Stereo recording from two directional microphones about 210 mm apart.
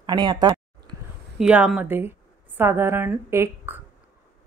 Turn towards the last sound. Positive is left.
turn(degrees=-10)  # may be behind; listen again after turning